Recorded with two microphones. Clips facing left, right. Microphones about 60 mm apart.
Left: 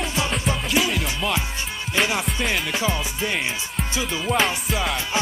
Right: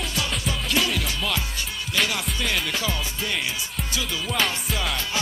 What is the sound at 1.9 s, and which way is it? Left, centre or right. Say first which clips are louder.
Music: left 3 dB; left.